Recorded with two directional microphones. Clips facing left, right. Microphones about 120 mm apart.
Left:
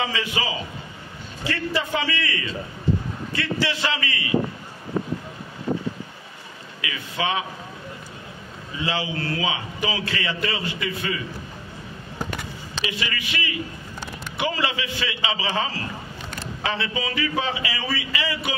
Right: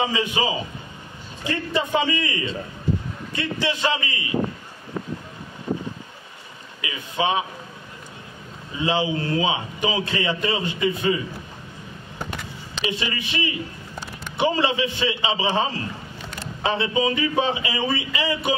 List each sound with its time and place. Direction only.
0.0 s a man's voice: 20° right (ahead or behind)
4.9 s a sound: 35° left (ahead or behind)
6.8 s a man's voice: 25° right (ahead or behind)
8.7 s a man's voice: 20° right (ahead or behind)
12.9 s a man's voice: 25° right (ahead or behind)